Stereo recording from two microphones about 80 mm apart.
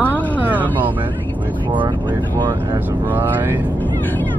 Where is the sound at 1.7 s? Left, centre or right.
Right.